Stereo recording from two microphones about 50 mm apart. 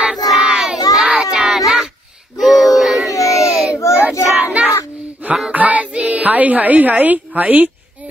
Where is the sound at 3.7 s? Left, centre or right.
Left.